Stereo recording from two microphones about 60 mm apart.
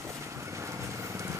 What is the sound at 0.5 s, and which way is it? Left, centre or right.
Vehicle, right.